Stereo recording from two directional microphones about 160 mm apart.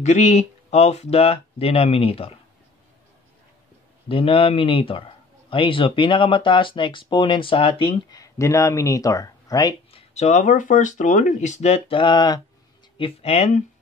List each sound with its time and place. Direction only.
0.0 s speech: 45° left (ahead or behind)
4.1 s speech: 35° left (ahead or behind)
9.9 s speech: 45° left (ahead or behind)